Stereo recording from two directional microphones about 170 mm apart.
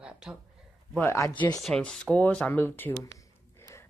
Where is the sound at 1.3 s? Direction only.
30° left (ahead or behind).